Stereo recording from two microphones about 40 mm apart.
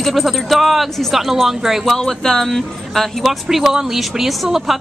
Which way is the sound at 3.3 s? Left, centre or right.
Centre.